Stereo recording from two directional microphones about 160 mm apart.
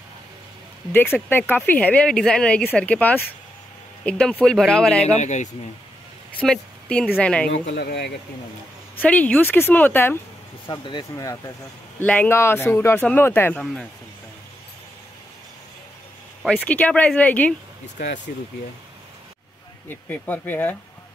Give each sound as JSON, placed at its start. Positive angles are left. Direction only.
{"t": 0.9, "sound": "speech", "side_deg": 10}
{"t": 5.1, "sound": "speech", "side_deg": 50}
{"t": 6.4, "sound": "speech", "side_deg": 5}
{"t": 7.4, "sound": "speech", "side_deg": 85}
{"t": 8.9, "sound": "speech", "side_deg": 10}
{"t": 10.7, "sound": "speech", "side_deg": 25}
{"t": 12.0, "sound": "speech", "side_deg": 10}
{"t": 16.4, "sound": "speech", "side_deg": 10}
{"t": 17.9, "sound": "speech", "side_deg": 90}
{"t": 19.9, "sound": "speech", "side_deg": 10}